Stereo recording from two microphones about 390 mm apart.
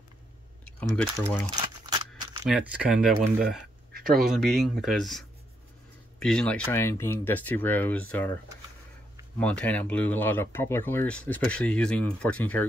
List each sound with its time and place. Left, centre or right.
0.9 s speech: centre
1.9 s a sound: centre
2.4 s speech: centre
3.9 s a sound: right
4.2 s speech: centre
6.2 s speech: centre
9.4 s speech: centre